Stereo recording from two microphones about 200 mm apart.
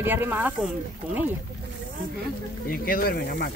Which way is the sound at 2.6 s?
45° left (ahead or behind).